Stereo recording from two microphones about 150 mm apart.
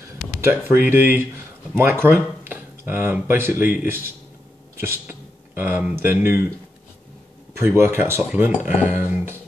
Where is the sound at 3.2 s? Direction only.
15° right (ahead or behind).